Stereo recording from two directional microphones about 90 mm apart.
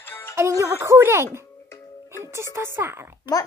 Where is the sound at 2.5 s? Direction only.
30° right (ahead or behind).